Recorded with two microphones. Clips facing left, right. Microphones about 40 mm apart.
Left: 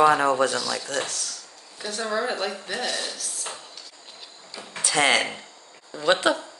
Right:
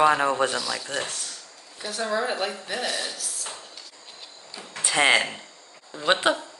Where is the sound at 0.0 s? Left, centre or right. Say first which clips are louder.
Left 2 dB; centre.